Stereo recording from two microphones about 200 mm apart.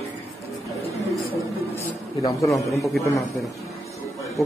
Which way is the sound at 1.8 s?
15° left (ahead or behind).